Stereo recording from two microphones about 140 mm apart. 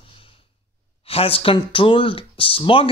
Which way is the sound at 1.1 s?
40° left (ahead or behind).